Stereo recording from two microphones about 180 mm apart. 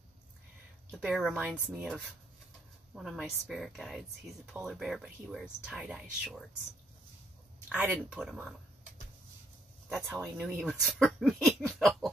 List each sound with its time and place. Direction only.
0.9 s speech: centre (ahead or behind)
2.9 s speech: centre (ahead or behind)
7.7 s speech: 5° right (ahead or behind)
9.8 s speech: centre (ahead or behind)